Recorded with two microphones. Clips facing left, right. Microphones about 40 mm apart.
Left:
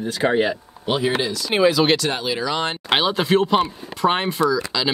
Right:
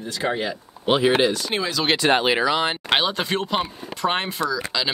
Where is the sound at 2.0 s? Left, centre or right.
Right.